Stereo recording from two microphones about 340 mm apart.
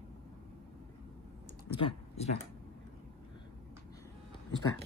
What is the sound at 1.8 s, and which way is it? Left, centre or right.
Speech, centre.